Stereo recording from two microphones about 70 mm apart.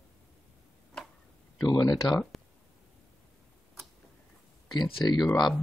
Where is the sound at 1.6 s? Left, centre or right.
Left.